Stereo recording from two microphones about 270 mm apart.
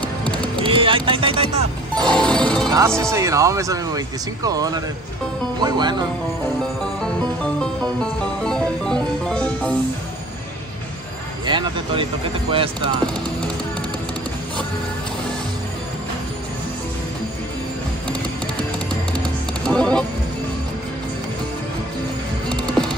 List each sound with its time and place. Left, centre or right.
0.6 s speech: centre
2.0 s music: centre
3.0 s speech: centre
8.0 s music: centre
11.4 s speech: centre
19.6 s music: centre